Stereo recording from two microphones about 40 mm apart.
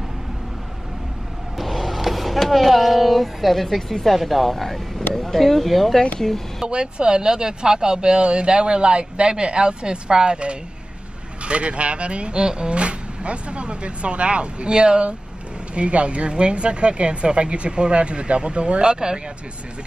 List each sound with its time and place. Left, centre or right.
1.6 s speech: centre
6.6 s speech: right